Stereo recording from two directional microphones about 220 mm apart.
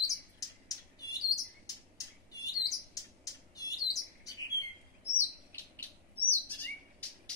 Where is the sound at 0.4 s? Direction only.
15° left (ahead or behind).